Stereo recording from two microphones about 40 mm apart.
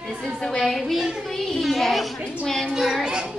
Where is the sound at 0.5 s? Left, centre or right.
Centre.